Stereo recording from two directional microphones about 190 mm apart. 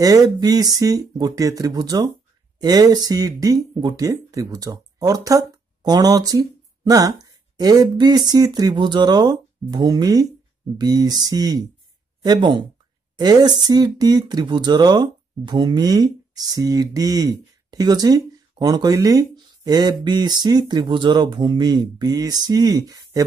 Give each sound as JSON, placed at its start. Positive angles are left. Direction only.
{"t": 0.0, "sound": "speech", "side_deg": -20}